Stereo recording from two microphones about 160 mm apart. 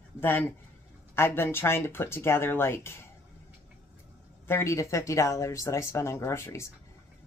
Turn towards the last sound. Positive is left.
turn(degrees=15)  # may be behind; listen again after turning